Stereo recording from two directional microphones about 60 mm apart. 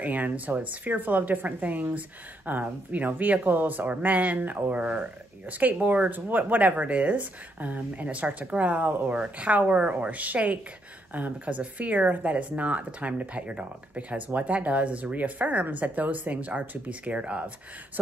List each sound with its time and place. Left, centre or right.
0.0 s a woman's voice: right